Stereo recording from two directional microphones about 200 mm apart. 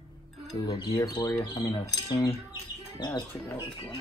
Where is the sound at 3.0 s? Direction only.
15° left (ahead or behind).